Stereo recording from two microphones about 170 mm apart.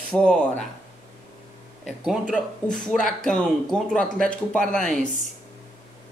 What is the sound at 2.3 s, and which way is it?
Speech, 5° left (ahead or behind).